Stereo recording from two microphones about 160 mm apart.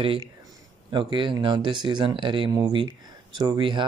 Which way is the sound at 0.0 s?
35° right (ahead or behind).